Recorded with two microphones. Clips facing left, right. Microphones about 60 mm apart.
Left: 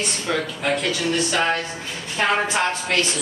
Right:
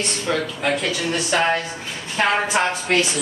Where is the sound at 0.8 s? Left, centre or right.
Centre.